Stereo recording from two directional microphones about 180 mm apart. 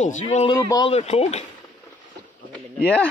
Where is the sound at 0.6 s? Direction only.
20° left (ahead or behind).